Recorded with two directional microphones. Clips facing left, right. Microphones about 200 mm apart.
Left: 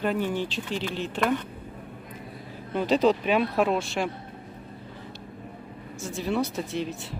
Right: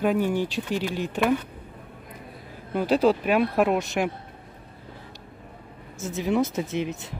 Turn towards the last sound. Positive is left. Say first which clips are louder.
# right 3 dB
turn(degrees=-20)  # may be behind; listen again after turning